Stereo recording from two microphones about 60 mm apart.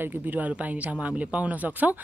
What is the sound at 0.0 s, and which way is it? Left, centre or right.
Speech, right.